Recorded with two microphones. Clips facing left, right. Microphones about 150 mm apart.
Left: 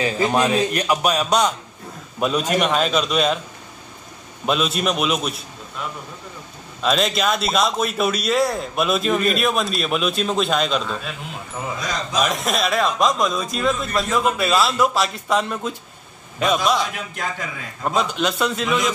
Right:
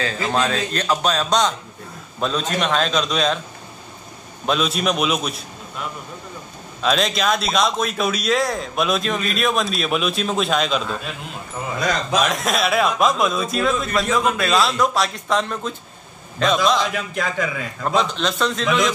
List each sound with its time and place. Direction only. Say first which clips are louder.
0.0 s speech: left 3 dB; 15° left (ahead or behind)
4.5 s a man's voice: even; centre (ahead or behind)
6.8 s a man's voice: even; centre (ahead or behind)
11.8 s speech: right 9 dB; 60° right (ahead or behind)
12.2 s a man's voice: left 3 dB; centre (ahead or behind)
16.9 s a man's voice: right 5 dB; 90° right
17.8 s speech: even; 10° left (ahead or behind)